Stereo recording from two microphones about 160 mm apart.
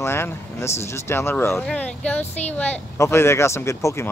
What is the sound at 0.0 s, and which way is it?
Speech, 15° left (ahead or behind).